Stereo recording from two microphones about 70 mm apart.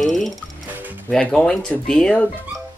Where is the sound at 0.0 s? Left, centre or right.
Centre.